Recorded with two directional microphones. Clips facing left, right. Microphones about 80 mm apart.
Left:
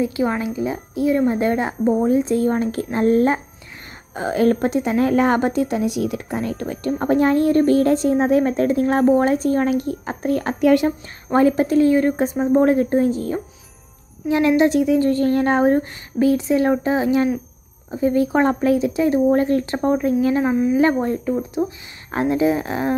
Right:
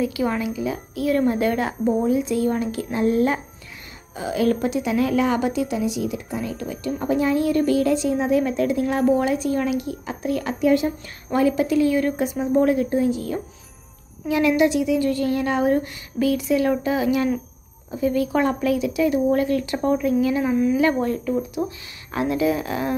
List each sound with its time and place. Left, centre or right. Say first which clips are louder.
0.0 s speech: left 2 dB; left
2.0 s a woman's voice: left 3 dB; left
10.6 s speech: left 3 dB; left
11.3 s a woman's voice: left 4 dB; left